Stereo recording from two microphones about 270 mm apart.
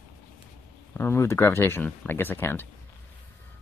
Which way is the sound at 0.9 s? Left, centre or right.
Centre.